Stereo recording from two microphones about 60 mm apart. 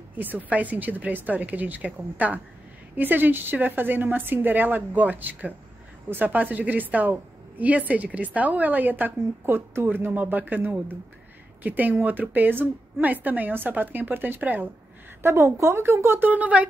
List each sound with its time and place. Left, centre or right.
0.2 s a woman's voice: right
15.2 s speech: right